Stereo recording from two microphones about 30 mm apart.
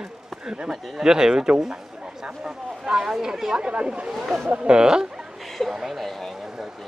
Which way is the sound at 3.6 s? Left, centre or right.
Right.